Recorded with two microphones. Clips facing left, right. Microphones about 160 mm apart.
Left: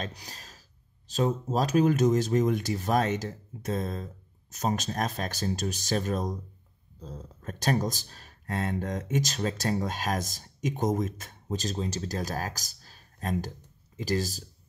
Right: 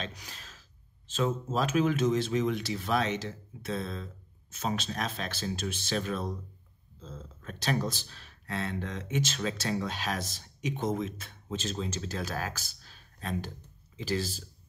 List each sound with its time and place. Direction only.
0.0 s speech: 35° left (ahead or behind)